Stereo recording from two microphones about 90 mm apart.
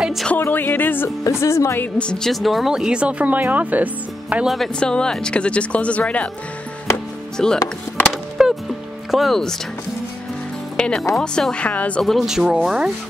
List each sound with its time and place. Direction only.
0.0 s speech: centre (ahead or behind)
0.4 s music: 20° left (ahead or behind)
1.4 s speech: 30° left (ahead or behind)
2.0 s speech: 10° left (ahead or behind); by 4.5 s 15° right (ahead or behind)
4.5 s speech: 5° left (ahead or behind)
7.4 s speech: 5° left (ahead or behind)
8.0 s music: 5° right (ahead or behind)
10.8 s speech: 5° left (ahead or behind)
11.5 s speech: 15° left (ahead or behind)
12.0 s speech: centre (ahead or behind)